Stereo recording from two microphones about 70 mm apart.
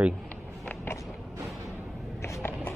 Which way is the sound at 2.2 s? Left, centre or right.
Left.